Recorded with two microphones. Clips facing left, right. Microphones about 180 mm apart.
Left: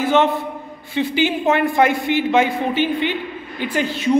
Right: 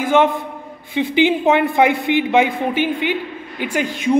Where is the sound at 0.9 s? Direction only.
15° right (ahead or behind).